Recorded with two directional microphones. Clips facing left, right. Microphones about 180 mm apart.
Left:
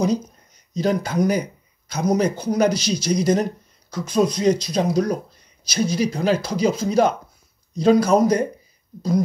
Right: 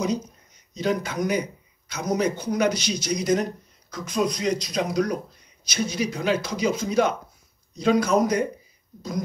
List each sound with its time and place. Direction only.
0.7 s speech: 35° left (ahead or behind)